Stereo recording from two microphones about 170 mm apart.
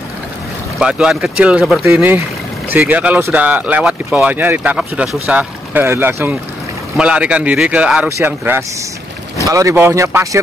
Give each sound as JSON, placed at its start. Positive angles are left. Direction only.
{"t": 0.7, "sound": "speech", "side_deg": -5}
{"t": 1.9, "sound": "speech", "side_deg": -15}